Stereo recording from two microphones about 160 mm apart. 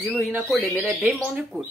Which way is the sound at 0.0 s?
5° left (ahead or behind).